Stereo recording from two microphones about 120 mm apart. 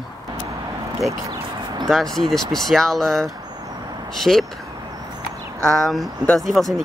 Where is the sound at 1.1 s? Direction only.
25° right (ahead or behind).